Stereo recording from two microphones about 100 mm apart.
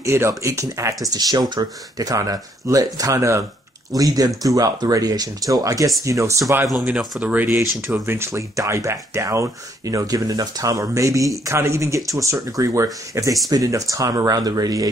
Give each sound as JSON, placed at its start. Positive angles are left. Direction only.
{"t": 0.0, "sound": "speech", "side_deg": -30}
{"t": 1.0, "sound": "speech", "side_deg": -40}
{"t": 7.2, "sound": "speech", "side_deg": -15}
{"t": 7.8, "sound": "speech", "side_deg": -25}